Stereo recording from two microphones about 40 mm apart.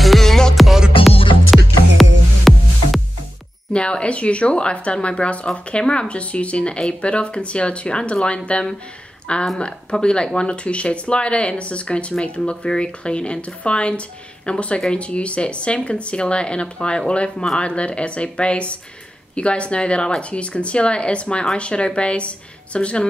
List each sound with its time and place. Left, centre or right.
0.0 s music: centre
1.0 s music: centre
3.7 s speech: left